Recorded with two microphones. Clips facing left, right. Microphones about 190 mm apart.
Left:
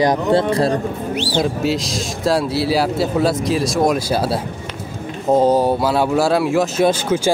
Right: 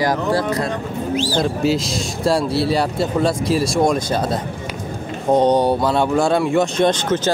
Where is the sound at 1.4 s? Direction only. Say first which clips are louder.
Left 1 dB; centre (ahead or behind).